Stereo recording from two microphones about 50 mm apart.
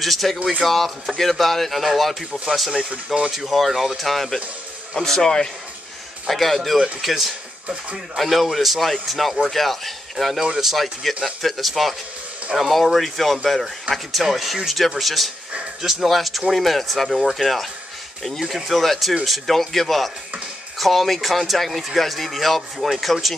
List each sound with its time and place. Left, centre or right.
0.0 s speech: centre
2.7 s speech: right
3.3 s speech: centre